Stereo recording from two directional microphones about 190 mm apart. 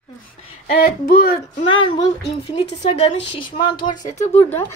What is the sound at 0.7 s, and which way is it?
Speech, 50° left (ahead or behind).